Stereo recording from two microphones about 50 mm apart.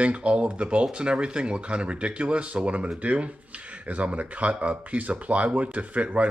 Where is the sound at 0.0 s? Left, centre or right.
Right.